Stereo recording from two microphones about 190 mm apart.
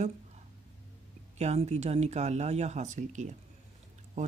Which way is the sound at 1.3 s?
35° right (ahead or behind).